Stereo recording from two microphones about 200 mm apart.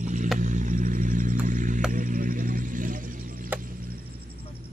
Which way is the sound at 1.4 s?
40° right (ahead or behind).